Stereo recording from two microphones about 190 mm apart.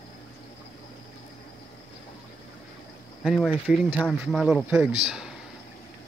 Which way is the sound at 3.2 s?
Centre (ahead or behind).